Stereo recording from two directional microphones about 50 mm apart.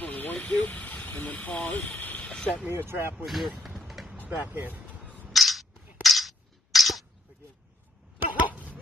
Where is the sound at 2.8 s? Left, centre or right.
Right.